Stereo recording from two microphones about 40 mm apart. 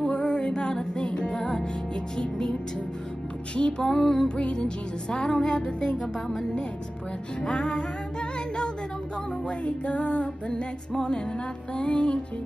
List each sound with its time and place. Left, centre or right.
0.0 s music: left
3.5 s music: left; by 4.3 s centre
4.4 s music: left
7.4 s music: centre
9.7 s music: left